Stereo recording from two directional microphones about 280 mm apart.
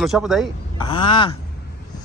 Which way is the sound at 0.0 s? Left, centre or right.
Centre.